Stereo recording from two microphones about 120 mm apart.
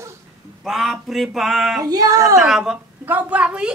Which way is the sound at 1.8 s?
30° right (ahead or behind).